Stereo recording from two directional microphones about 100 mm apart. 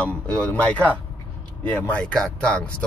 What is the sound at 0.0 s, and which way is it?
Speech, 10° left (ahead or behind).